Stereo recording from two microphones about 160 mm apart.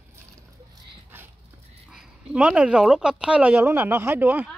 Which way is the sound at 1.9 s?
5° right (ahead or behind).